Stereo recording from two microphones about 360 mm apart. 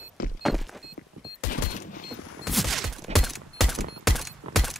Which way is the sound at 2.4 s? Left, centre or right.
Centre.